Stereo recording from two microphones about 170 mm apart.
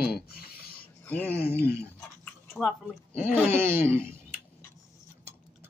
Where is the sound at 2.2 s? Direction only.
5° left (ahead or behind).